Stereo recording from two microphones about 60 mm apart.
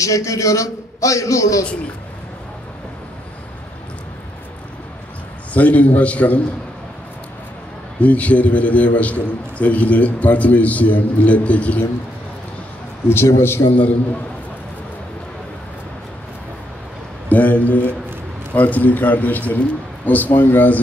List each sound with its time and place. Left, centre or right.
0.0 s a man's voice: left
5.5 s a man's voice: left
8.0 s a man's voice: left
13.1 s a man's voice: left
17.3 s a man's voice: left